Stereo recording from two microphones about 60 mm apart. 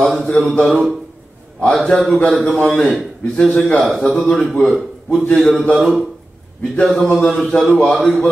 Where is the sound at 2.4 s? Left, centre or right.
Centre.